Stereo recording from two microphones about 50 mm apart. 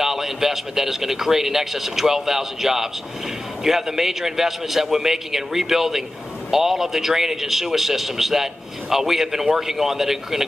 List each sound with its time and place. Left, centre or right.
0.0 s a man's voice: centre